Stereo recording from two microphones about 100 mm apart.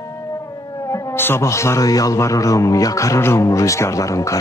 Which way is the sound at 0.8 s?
30° left (ahead or behind).